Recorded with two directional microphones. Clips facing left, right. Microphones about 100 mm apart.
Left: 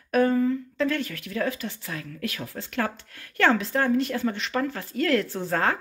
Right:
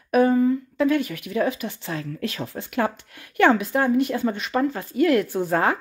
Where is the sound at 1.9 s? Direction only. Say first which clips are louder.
Right 4 dB; 30° right (ahead or behind).